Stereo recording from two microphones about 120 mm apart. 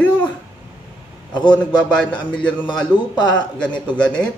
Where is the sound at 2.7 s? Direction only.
10° left (ahead or behind).